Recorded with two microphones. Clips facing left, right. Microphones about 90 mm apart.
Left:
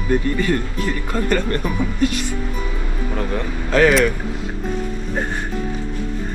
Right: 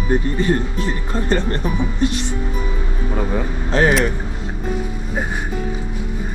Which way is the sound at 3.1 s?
10° right (ahead or behind).